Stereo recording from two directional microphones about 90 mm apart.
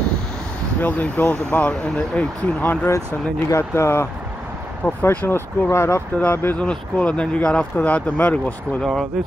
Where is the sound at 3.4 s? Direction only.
30° left (ahead or behind).